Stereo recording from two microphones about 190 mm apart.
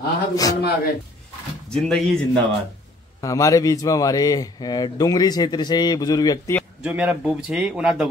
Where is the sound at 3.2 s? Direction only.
15° left (ahead or behind).